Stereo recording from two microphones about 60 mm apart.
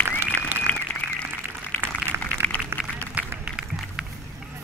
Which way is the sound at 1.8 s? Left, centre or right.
Right.